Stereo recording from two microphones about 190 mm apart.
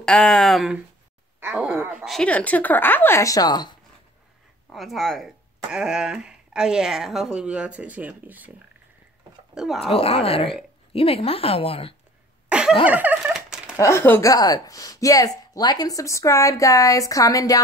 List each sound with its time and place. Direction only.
0.0 s speech: 5° left (ahead or behind); by 3.7 s 20° left (ahead or behind)
4.6 s speech: centre (ahead or behind)
9.6 s speech: centre (ahead or behind)
9.9 s a woman's voice: 30° left (ahead or behind)
12.4 s a sound: 5° right (ahead or behind)
13.7 s speech: 15° left (ahead or behind)